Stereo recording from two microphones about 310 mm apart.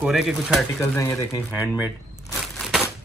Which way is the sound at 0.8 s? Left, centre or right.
Centre.